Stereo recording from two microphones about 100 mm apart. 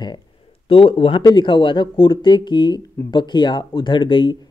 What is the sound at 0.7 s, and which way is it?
Speech, 60° left (ahead or behind).